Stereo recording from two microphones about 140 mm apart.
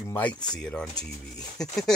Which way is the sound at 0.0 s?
15° left (ahead or behind).